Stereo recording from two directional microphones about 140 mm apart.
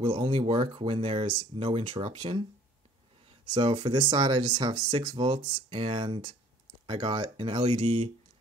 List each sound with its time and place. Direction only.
0.0 s speech: 40° right (ahead or behind)